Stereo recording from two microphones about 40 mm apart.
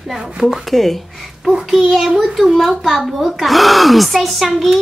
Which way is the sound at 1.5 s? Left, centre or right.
Centre.